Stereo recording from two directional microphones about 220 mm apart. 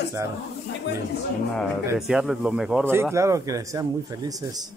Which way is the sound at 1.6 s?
Centre (ahead or behind).